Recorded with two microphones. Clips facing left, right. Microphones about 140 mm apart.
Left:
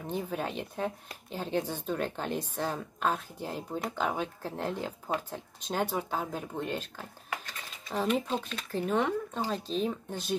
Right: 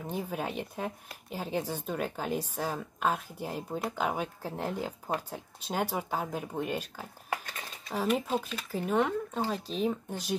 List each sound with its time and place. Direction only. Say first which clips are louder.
0.0 s speech: left 1 dB; 10° right (ahead or behind)